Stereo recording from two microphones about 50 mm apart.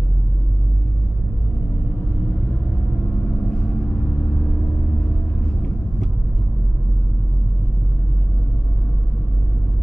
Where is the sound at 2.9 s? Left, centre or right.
Centre.